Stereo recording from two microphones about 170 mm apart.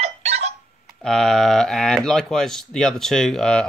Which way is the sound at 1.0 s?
5° left (ahead or behind).